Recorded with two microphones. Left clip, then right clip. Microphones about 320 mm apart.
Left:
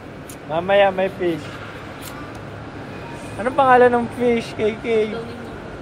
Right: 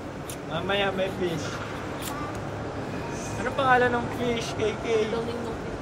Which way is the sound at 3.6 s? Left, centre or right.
Centre.